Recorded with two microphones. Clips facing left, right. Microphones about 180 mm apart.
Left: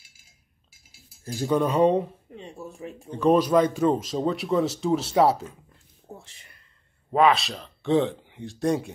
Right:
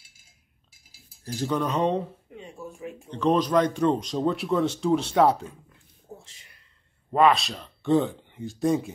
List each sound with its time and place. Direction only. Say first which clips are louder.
1.2 s speech: left 3 dB; 10° left (ahead or behind)
2.3 s a sound: left 1 dB; 35° left (ahead or behind)
3.1 s speech: left 3 dB; 10° left (ahead or behind)
7.1 s speech: even; centre (ahead or behind)